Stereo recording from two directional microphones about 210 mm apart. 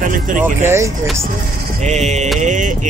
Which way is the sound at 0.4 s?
10° right (ahead or behind).